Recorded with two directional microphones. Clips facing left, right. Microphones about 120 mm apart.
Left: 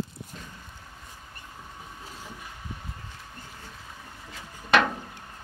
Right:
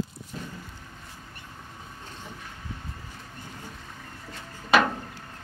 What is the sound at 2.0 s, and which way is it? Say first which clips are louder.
Train: right 1 dB; 5° left (ahead or behind).